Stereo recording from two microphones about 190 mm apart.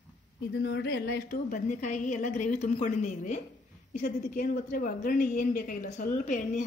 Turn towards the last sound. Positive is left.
turn(degrees=40)  # may be behind; listen again after turning